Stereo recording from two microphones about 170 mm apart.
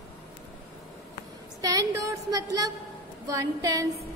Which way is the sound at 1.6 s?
20° right (ahead or behind).